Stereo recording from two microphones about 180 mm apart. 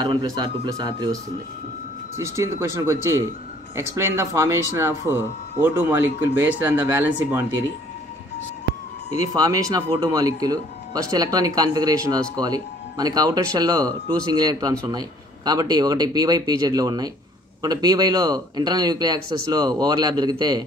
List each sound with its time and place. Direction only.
0.0 s speech: 25° right (ahead or behind)
9.3 s speech: 20° right (ahead or behind)